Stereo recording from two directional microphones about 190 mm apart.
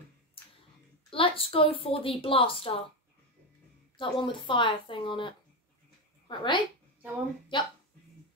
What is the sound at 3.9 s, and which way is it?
A woman's voice, 25° left (ahead or behind).